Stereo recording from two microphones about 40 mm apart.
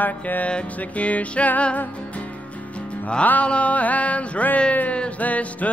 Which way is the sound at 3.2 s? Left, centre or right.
Left.